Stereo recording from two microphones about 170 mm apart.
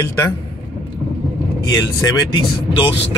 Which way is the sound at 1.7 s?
20° left (ahead or behind).